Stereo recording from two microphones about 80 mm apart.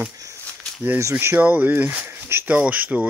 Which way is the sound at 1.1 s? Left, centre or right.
Right.